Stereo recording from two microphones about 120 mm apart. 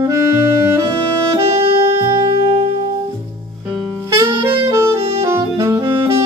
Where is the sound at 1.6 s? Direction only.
55° right (ahead or behind).